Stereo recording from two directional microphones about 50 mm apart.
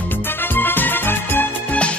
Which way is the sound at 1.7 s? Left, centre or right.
Left.